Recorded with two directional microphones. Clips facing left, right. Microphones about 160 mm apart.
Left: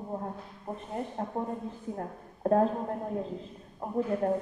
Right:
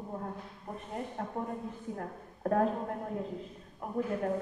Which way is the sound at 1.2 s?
30° left (ahead or behind).